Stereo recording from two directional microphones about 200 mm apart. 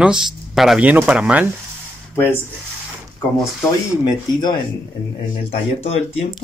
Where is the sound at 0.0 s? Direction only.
5° right (ahead or behind).